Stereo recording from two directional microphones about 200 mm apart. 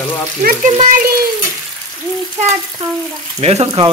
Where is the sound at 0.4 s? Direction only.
40° right (ahead or behind).